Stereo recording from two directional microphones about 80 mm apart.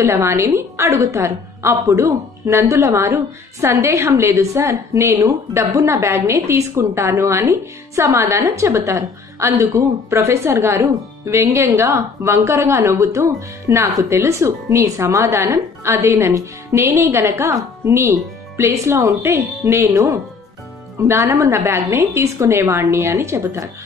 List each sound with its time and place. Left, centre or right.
0.0 s a woman's voice: right